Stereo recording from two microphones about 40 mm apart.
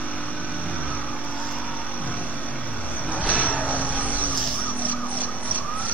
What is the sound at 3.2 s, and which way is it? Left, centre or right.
Vehicle, left.